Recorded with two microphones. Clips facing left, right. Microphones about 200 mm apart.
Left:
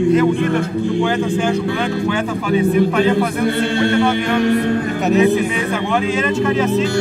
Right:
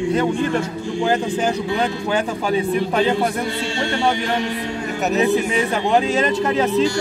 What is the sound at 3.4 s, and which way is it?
A capella, 55° left (ahead or behind).